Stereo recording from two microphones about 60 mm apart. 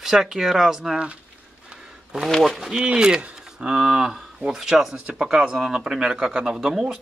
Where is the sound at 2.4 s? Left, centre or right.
Centre.